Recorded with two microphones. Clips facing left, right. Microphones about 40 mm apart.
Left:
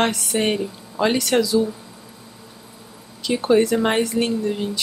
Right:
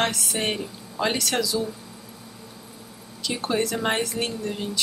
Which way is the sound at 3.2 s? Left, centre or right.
Centre.